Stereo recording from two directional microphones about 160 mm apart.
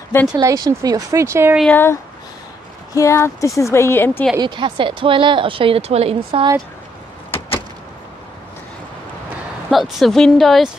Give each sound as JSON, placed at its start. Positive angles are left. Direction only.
{"t": 0.4, "sound": "speech", "side_deg": -25}
{"t": 1.6, "sound": "a woman's voice", "side_deg": 10}
{"t": 4.4, "sound": "speech", "side_deg": -30}
{"t": 9.7, "sound": "a woman's voice", "side_deg": 0}